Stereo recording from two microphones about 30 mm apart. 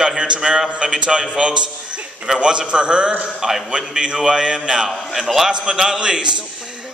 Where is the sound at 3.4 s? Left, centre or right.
Centre.